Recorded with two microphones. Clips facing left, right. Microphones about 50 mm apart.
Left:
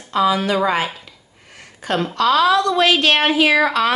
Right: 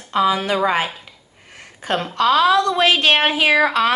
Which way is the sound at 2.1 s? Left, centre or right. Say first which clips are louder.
Even; right.